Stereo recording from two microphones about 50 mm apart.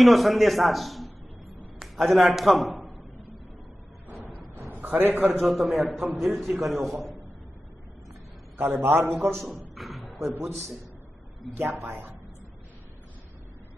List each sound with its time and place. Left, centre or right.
0.0 s a man's voice: centre
4.6 s a man's voice: right
5.4 s a man's voice: centre
8.5 s a man's voice: right
9.1 s a man's voice: right
9.8 s a sound: centre
11.4 s a man's voice: centre